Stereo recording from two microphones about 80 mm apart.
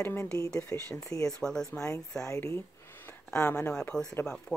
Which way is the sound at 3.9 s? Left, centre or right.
Centre.